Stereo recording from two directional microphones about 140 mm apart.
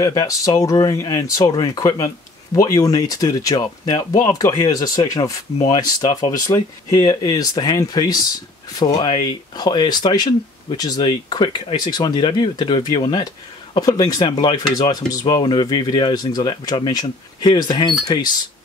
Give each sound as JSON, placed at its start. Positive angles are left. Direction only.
{"t": 0.0, "sound": "speech", "side_deg": 25}